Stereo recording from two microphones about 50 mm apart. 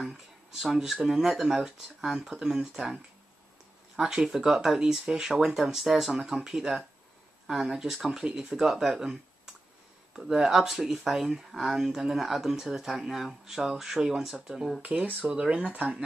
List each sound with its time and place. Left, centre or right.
0.0 s speech: centre
14.8 s speech: right